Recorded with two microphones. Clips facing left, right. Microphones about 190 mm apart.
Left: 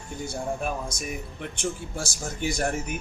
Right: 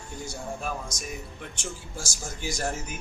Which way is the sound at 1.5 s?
60° left (ahead or behind).